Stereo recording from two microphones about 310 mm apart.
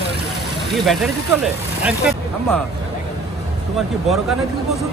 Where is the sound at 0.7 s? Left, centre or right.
Centre.